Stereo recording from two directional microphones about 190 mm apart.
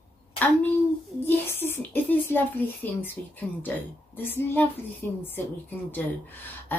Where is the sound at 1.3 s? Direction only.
10° left (ahead or behind).